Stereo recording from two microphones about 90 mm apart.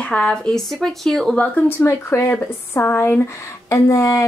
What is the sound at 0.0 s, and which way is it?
Speech, 10° left (ahead or behind).